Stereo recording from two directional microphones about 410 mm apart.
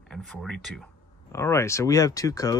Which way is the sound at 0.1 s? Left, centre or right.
Centre.